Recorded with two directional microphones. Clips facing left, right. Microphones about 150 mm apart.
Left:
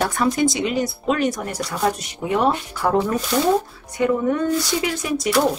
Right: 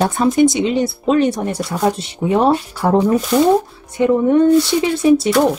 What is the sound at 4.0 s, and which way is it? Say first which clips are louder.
Speech: right 7 dB; 25° right (ahead or behind).